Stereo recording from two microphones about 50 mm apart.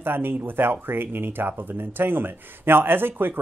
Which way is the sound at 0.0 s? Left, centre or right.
Right.